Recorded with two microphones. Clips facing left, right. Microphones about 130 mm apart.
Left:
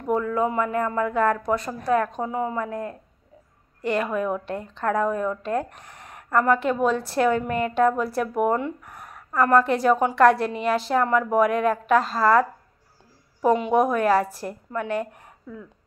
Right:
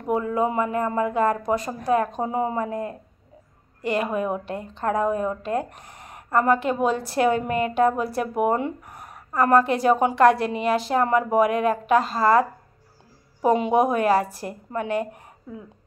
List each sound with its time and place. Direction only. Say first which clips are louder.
0.2 s speech: even; 20° right (ahead or behind)